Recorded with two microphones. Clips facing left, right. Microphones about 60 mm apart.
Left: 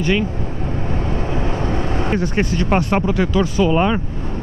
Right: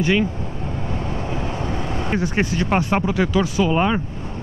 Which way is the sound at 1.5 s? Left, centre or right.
Left.